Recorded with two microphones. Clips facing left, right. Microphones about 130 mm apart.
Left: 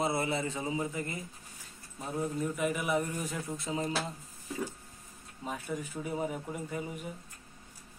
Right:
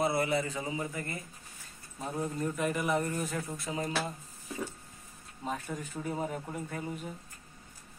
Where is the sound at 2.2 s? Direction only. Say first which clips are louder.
Left 1 dB; 5° left (ahead or behind); by 3.9 s 20° left (ahead or behind).